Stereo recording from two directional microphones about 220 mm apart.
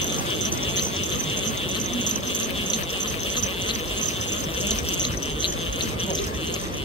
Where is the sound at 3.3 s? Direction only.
20° left (ahead or behind).